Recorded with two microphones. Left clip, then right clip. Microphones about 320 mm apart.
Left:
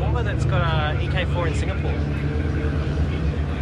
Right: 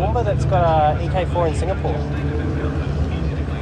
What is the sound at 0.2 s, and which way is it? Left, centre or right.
Speech, centre.